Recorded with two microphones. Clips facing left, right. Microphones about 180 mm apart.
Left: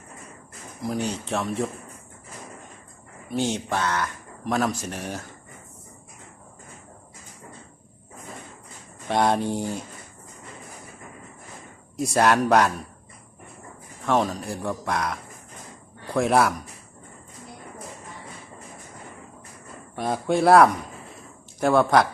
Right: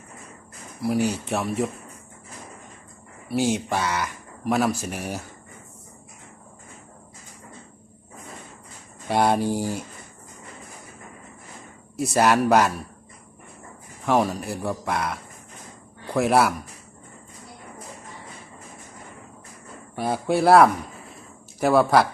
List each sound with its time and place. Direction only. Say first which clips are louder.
0.7 s speech: right 4 dB; 10° right (ahead or behind)
3.3 s speech: right 3 dB; 10° right (ahead or behind)
9.0 s speech: right 1 dB; 5° right (ahead or behind)
12.0 s speech: right 1 dB; 5° right (ahead or behind)
14.0 s speech: right 1 dB; 10° right (ahead or behind)
20.0 s speech: even; 5° right (ahead or behind)